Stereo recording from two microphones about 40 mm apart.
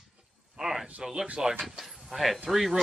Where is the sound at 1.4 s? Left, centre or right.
Centre.